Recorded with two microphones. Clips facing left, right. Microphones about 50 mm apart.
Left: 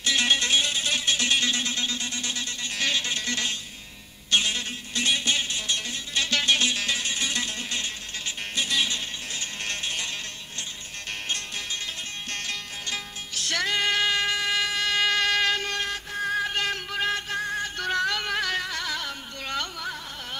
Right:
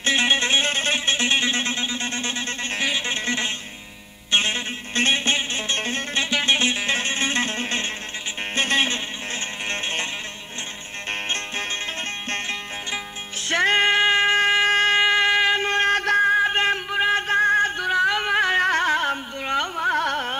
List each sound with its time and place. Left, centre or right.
0.0 s music: right
0.9 s music: right
2.0 s a sound: right
3.1 s music: right
6.1 s music: right
11.1 s music: right
12.9 s music: right
17.3 s music: right
17.7 s music: centre
18.6 s carnatic music: right
19.4 s carnatic music: right
19.9 s carnatic music: right